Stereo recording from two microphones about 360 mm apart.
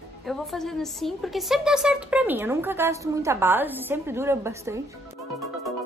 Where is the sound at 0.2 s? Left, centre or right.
Centre.